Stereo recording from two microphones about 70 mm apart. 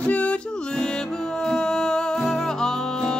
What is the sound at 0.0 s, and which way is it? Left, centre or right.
Music, centre.